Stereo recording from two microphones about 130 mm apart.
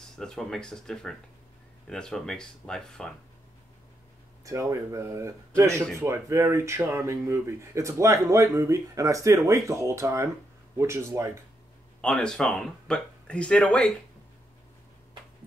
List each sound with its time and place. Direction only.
0.1 s speech: 5° left (ahead or behind)
4.5 s speech: 25° right (ahead or behind)
12.0 s speech: 5° left (ahead or behind)